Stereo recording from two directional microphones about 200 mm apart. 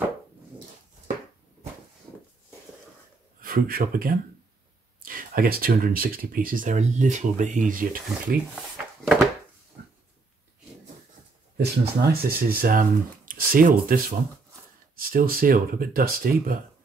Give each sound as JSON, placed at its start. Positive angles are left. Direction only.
{"t": 3.3, "sound": "speech", "side_deg": -45}
{"t": 8.5, "sound": "drawer open or close", "side_deg": 0}
{"t": 11.5, "sound": "speech", "side_deg": -55}